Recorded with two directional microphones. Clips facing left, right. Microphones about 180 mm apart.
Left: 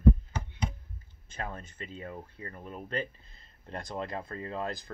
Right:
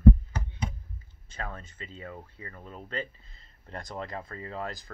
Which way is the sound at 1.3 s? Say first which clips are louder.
Even; 15° left (ahead or behind).